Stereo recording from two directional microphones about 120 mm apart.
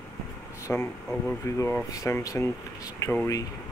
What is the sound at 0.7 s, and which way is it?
Speech, 15° left (ahead or behind).